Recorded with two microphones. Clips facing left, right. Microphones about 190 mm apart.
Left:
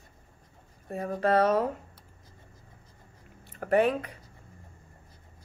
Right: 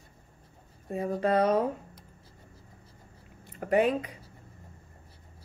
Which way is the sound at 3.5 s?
15° right (ahead or behind).